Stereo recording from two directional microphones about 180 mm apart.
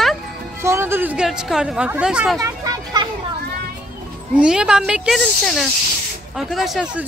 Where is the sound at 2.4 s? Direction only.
20° right (ahead or behind).